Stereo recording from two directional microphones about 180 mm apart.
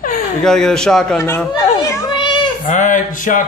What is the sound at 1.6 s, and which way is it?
Children playing, 15° left (ahead or behind).